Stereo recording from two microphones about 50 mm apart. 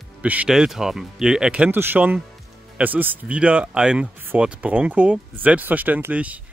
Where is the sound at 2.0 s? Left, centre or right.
Right.